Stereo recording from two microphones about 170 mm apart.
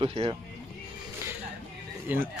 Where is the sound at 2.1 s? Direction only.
10° right (ahead or behind).